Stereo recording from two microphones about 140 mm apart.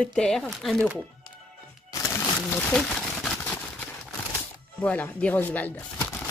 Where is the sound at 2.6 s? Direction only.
10° left (ahead or behind).